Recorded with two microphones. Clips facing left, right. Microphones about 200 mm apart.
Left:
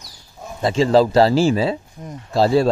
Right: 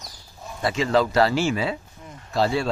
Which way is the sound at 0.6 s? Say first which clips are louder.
Left 6 dB; 30° left (ahead or behind).